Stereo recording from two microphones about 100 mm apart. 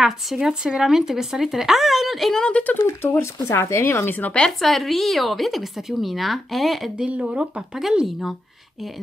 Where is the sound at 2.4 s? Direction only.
15° left (ahead or behind).